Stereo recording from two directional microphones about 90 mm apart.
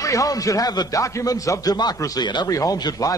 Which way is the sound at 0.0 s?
40° left (ahead or behind).